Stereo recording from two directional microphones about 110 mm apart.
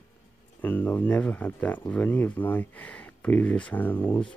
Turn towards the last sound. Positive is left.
turn(degrees=20)  # may be behind; listen again after turning